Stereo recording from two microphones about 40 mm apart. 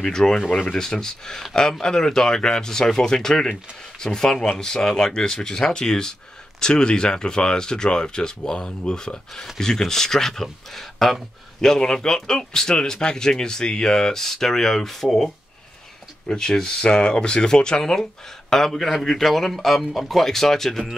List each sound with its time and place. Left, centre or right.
0.0 s speech: centre
16.3 s speech: centre